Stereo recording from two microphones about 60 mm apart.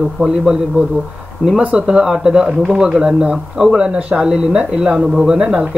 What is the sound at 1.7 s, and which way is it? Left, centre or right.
Speech, centre.